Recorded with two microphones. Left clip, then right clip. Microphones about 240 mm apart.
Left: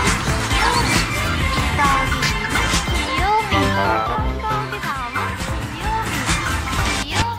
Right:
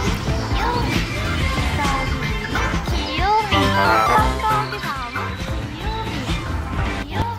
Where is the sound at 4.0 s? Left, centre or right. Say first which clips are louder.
Right 6 dB; right.